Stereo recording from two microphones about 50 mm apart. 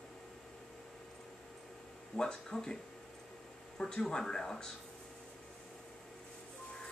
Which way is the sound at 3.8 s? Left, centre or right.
Centre.